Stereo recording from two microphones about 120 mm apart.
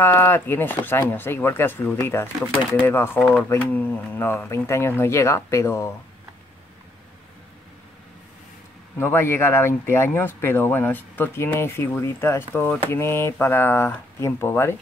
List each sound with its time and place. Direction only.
0.0 s speech: 20° left (ahead or behind)
8.9 s speech: 20° left (ahead or behind)